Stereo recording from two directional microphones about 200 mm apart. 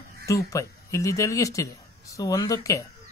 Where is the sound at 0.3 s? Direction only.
15° left (ahead or behind).